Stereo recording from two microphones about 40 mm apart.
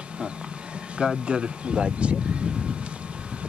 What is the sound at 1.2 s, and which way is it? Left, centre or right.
Speech, right.